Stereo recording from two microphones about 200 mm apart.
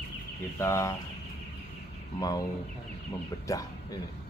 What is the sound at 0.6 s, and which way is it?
Speech, 15° left (ahead or behind).